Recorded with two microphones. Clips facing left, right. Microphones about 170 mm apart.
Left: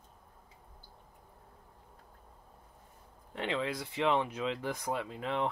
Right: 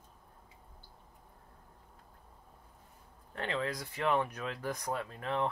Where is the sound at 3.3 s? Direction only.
20° left (ahead or behind).